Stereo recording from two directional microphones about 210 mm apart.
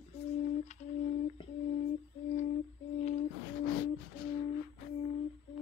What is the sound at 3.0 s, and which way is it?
Music, 35° left (ahead or behind).